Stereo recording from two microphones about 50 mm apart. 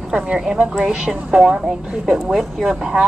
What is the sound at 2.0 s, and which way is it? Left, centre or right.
A woman's voice, centre.